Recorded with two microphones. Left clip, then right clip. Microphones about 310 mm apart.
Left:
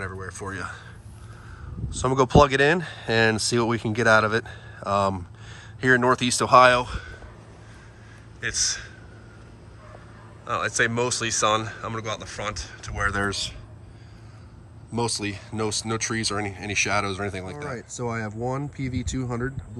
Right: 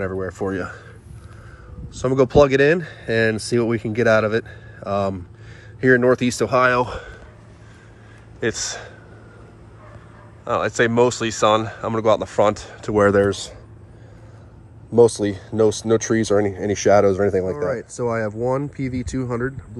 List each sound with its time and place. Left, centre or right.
0.0 s speech: centre
1.9 s speech: centre
8.4 s a man's voice: centre
10.4 s speech: centre
15.2 s speech: centre
17.7 s speech: centre